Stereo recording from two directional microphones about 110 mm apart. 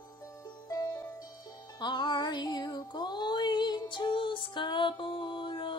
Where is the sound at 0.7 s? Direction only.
35° left (ahead or behind).